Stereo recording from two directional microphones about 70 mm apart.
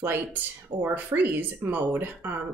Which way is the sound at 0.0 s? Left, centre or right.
Right.